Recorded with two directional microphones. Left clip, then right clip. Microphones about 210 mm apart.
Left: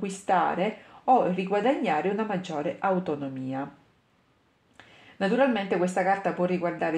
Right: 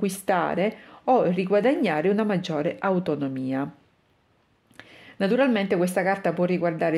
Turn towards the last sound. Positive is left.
turn(degrees=-50)  # may be behind; listen again after turning